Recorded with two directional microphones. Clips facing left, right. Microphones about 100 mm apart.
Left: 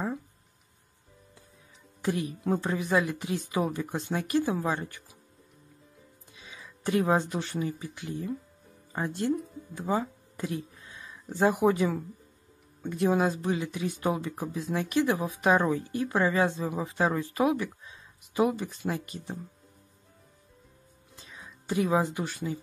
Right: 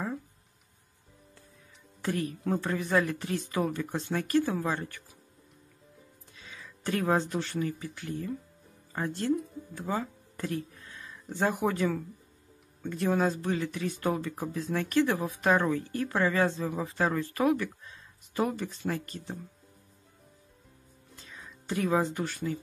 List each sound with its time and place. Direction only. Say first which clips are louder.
2.0 s speech: left 1 dB; 15° left (ahead or behind)
6.4 s speech: left 3 dB; 15° left (ahead or behind)
9.8 s music: left 4 dB; 15° left (ahead or behind)
11.2 s speech: left 5 dB; 10° left (ahead or behind)
21.2 s music: left 1 dB; 15° left (ahead or behind)
21.5 s speech: left 2 dB; 10° left (ahead or behind)